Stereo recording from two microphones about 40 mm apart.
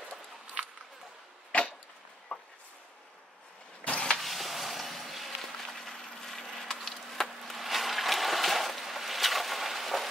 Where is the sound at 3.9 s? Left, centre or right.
Left.